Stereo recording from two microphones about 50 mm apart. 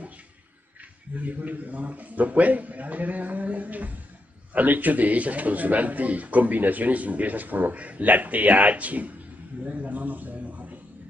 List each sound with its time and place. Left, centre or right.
1.1 s a man's voice: right